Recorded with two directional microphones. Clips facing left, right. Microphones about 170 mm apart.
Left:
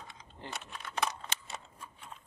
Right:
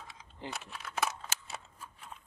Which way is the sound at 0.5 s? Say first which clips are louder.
Right 1 dB; centre (ahead or behind).